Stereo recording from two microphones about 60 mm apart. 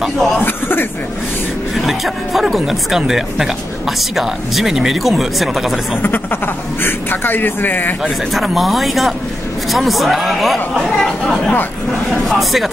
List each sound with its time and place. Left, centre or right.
0.0 s speech: centre
0.4 s a sound: left
1.8 s speech: centre
6.0 s a man's voice: left
8.3 s speech: centre